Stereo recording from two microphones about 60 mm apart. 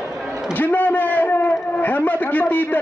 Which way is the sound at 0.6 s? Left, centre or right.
Left.